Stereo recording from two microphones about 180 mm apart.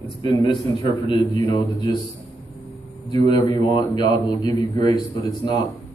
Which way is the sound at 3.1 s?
20° left (ahead or behind).